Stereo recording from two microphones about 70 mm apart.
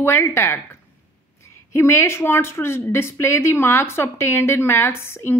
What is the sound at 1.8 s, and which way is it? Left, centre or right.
A woman's voice, left.